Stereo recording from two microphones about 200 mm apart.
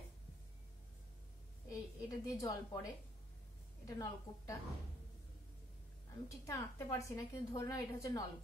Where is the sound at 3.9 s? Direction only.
15° left (ahead or behind).